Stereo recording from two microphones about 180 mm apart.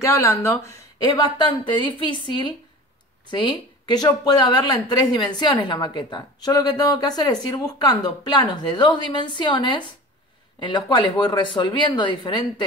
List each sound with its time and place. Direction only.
0.0 s a woman's voice: 15° left (ahead or behind)